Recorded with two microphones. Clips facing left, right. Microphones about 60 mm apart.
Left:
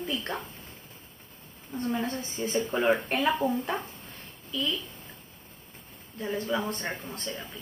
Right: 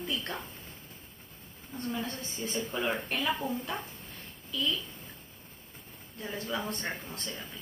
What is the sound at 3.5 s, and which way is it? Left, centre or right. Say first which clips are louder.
Speech: left 5 dB; left.